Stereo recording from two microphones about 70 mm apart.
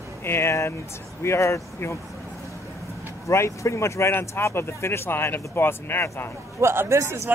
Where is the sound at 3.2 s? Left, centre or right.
Left.